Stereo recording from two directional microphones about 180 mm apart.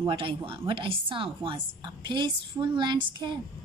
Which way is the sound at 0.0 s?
25° right (ahead or behind).